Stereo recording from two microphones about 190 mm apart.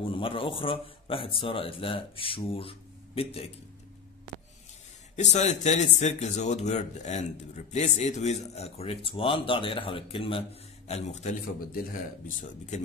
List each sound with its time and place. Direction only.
0.1 s speech: 30° left (ahead or behind)
5.1 s speech: 35° left (ahead or behind)